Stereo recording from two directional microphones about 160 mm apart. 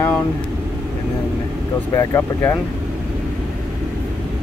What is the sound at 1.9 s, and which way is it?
Speech, 15° left (ahead or behind).